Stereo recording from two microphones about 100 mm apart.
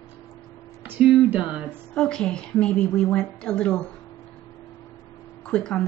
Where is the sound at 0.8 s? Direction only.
15° right (ahead or behind).